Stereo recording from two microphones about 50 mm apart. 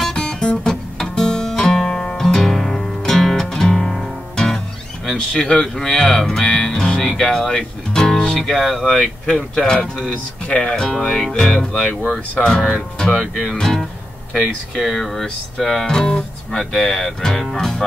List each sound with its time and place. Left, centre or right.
0.1 s guitar: centre
2.1 s music: centre
5.1 s speech: centre
6.6 s music: centre
8.4 s speech: centre
9.0 s speech: centre
13.2 s speech: centre